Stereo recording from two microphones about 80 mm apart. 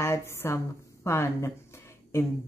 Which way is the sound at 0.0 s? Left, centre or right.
Left.